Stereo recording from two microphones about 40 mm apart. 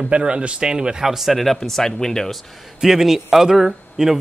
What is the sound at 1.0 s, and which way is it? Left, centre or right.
Speech, centre.